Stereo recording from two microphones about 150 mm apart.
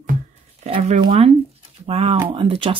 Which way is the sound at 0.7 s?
40° right (ahead or behind).